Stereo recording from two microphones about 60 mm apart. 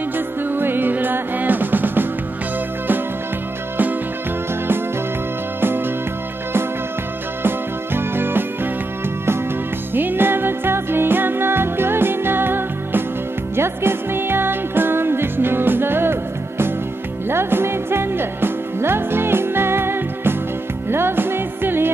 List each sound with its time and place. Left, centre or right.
0.5 s music: right
7.4 s music: right
9.9 s music: right